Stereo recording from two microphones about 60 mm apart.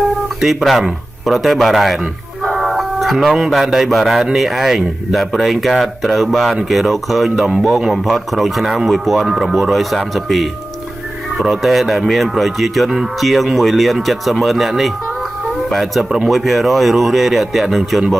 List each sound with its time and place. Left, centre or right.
0.4 s speech: centre